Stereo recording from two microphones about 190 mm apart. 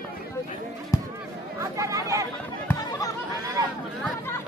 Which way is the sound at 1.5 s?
15° right (ahead or behind).